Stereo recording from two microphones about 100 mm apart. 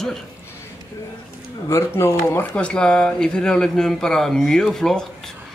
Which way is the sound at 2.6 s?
10° left (ahead or behind).